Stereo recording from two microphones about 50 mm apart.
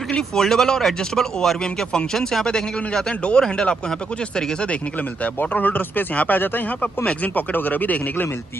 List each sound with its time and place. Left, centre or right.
0.1 s speech: centre
5.5 s speech: left